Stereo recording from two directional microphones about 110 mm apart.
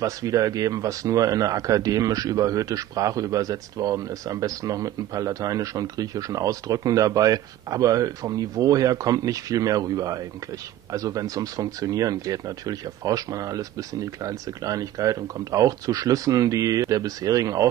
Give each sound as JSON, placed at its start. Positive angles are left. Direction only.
{"t": 0.0, "sound": "speech", "side_deg": -30}